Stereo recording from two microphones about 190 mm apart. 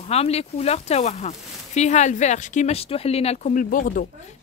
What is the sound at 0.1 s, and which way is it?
Speech, 35° left (ahead or behind).